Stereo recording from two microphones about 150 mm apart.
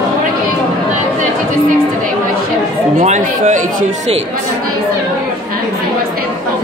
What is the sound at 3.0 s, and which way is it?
Speech, 55° right (ahead or behind).